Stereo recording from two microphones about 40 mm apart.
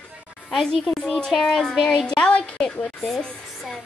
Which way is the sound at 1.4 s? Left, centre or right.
Centre.